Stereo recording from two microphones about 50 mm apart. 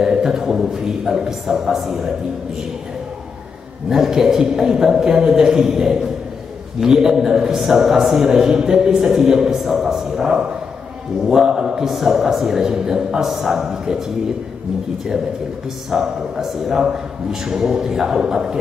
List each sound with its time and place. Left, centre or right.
0.0 s a man's voice: centre
3.9 s a man's voice: centre
15.9 s a man's voice: centre